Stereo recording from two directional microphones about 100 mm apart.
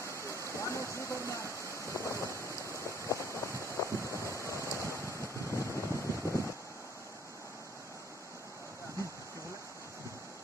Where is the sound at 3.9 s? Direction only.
30° right (ahead or behind).